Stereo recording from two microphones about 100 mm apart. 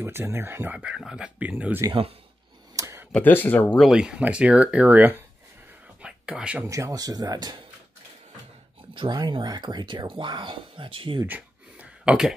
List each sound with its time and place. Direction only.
0.0 s speech: 25° right (ahead or behind)
0.7 s speech: 10° right (ahead or behind)
2.7 s a sound: 30° right (ahead or behind)
3.2 s speech: 20° left (ahead or behind)
3.7 s speech: 5° right (ahead or behind)
6.0 s whispering: 10° right (ahead or behind)
6.6 s speech: 30° right (ahead or behind)
8.9 s speech: 50° right (ahead or behind)
11.2 s a sound: 15° right (ahead or behind)